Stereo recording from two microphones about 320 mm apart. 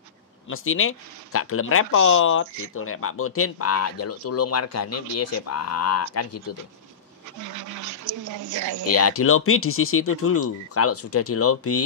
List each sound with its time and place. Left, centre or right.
0.5 s speech: left
7.3 s speech: right
8.8 s speech: left